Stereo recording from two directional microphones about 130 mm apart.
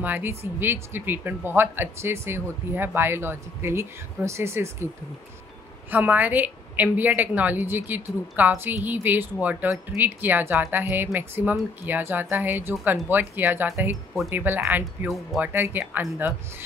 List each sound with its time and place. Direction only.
0.0 s speech: 15° right (ahead or behind)
5.9 s speech: 15° right (ahead or behind)
15.0 s speech: centre (ahead or behind)
15.4 s speech: 15° right (ahead or behind)